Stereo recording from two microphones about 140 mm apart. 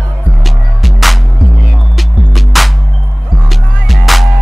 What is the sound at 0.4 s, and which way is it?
Music, centre (ahead or behind).